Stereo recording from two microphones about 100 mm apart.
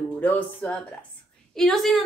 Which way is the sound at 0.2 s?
15° left (ahead or behind).